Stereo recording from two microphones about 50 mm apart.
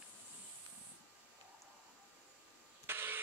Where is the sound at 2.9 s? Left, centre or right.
Right.